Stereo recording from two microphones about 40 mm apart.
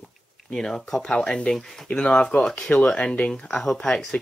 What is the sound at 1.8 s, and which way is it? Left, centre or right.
Speech, left.